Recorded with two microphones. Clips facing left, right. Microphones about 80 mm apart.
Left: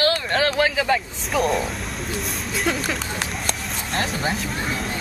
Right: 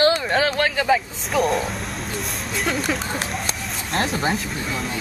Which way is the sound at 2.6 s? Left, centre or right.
Centre.